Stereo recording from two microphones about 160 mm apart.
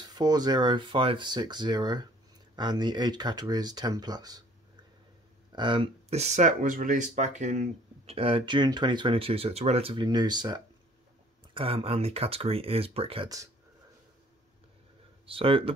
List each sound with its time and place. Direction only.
0.0 s speech: 25° right (ahead or behind)
5.5 s speech: 30° right (ahead or behind)
15.2 s speech: 35° right (ahead or behind)